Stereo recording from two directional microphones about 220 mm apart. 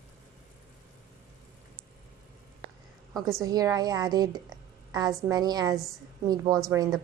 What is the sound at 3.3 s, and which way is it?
A woman's voice, 15° right (ahead or behind).